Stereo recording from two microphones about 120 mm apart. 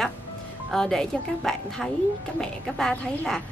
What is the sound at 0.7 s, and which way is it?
A woman's voice, 5° left (ahead or behind).